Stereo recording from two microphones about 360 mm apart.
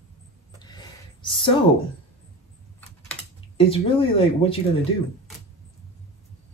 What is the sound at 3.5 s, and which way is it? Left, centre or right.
Speech, centre.